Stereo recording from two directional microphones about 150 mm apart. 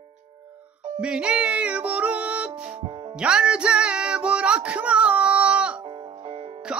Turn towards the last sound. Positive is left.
turn(degrees=-35)  # may be behind; listen again after turning